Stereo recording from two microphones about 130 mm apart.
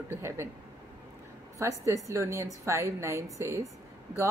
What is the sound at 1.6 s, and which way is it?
Speech, 25° right (ahead or behind).